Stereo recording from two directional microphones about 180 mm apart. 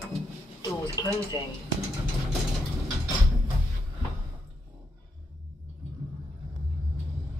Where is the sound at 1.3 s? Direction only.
20° left (ahead or behind).